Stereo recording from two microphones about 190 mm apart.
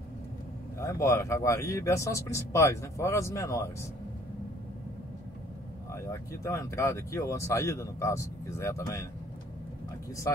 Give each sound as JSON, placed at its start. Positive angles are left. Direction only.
{"t": 0.7, "sound": "speech", "side_deg": 15}
{"t": 5.9, "sound": "speech", "side_deg": 15}